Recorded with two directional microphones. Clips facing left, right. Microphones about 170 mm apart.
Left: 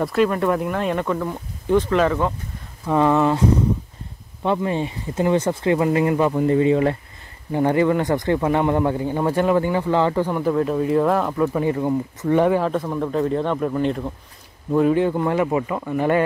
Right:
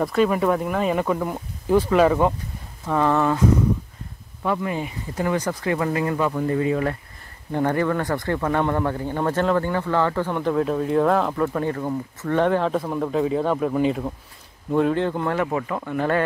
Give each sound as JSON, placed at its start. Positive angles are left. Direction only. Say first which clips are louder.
{"t": 0.0, "sound": "speech", "louder": "left 1 dB", "side_deg": 0}
{"t": 2.9, "sound": "speech", "louder": "left 3 dB", "side_deg": 15}
{"t": 4.4, "sound": "speech", "louder": "left 3 dB", "side_deg": 25}